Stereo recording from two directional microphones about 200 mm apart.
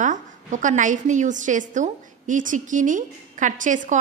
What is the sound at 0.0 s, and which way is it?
A woman's voice, 40° right (ahead or behind).